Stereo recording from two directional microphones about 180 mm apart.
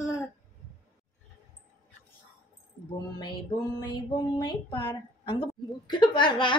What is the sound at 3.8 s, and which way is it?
Speech, 20° left (ahead or behind).